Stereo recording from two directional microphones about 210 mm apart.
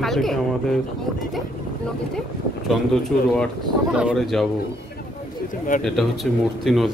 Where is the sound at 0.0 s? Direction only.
Centre (ahead or behind).